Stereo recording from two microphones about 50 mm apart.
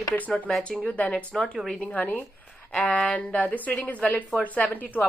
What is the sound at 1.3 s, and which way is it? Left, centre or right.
Speech, centre.